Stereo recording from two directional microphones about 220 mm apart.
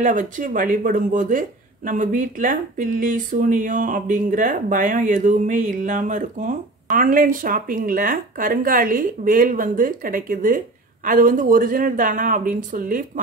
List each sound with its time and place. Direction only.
0.0 s speech: 35° right (ahead or behind)